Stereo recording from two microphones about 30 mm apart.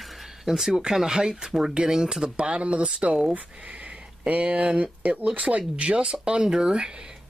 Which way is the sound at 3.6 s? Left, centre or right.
Right.